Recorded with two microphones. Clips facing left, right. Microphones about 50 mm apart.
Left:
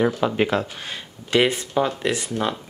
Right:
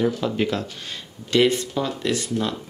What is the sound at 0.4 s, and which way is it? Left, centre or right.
Speech, left.